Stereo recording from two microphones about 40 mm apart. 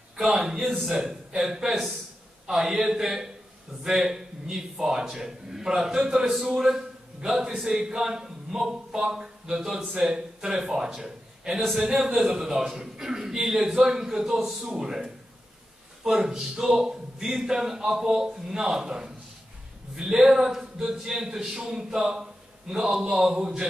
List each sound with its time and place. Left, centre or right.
0.2 s a man's voice: centre
0.8 s a man's voice: centre
16.2 s a man's voice: centre